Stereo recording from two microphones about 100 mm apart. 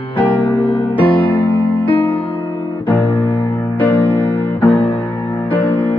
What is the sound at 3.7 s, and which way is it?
Music, 15° left (ahead or behind).